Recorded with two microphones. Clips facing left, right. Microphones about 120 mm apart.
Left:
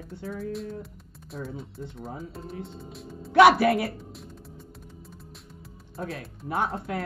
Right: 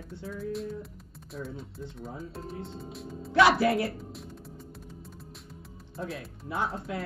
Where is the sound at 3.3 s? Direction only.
70° left (ahead or behind).